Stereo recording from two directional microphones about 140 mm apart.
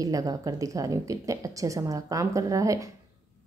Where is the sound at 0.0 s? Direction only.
25° right (ahead or behind).